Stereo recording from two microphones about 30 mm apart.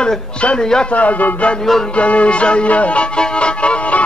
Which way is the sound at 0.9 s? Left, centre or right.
Left.